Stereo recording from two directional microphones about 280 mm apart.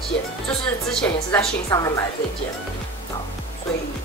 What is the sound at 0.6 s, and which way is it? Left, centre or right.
A woman's voice, centre.